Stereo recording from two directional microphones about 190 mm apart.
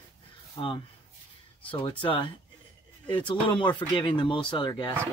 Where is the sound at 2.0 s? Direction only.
25° left (ahead or behind).